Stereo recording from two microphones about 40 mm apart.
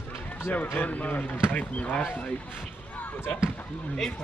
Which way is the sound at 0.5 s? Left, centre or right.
Left.